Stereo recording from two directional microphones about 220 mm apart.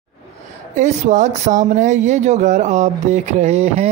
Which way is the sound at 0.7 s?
35° right (ahead or behind).